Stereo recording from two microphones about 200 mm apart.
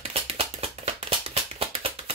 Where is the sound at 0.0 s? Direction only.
30° right (ahead or behind).